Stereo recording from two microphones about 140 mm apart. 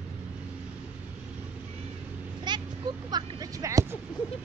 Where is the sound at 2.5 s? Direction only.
30° right (ahead or behind).